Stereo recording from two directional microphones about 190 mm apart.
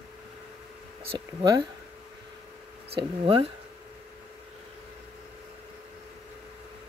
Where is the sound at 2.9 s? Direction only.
30° right (ahead or behind).